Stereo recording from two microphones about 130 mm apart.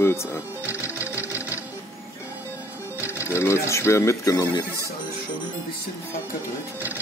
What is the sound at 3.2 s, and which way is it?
Speech, 20° left (ahead or behind).